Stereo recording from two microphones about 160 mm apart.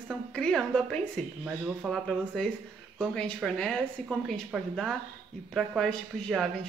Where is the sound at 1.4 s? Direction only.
5° right (ahead or behind).